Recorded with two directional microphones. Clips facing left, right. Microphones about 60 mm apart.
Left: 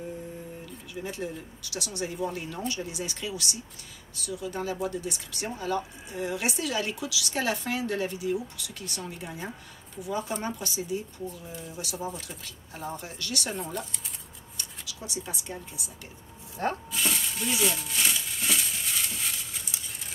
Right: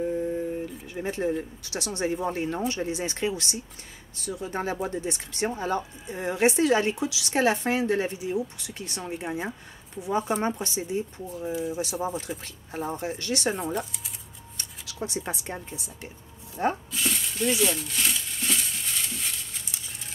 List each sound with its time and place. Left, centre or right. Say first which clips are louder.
0.9 s speech: right 7 dB; right
11.5 s speech: right 10 dB; centre
11.8 s speech: right 6 dB; right
13.7 s speech: right 4 dB; centre
14.9 s speech: right 6 dB; right
15.7 s speech: right 4 dB; right
16.6 s speech: right 3 dB; centre
16.9 s a sound: even; centre